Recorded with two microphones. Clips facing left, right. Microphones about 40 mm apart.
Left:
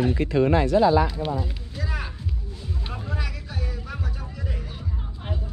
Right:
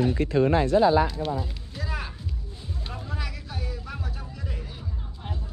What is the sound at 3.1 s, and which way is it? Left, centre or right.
Music, centre.